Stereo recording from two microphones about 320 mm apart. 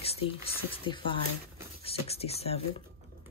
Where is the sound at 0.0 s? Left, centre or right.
Centre.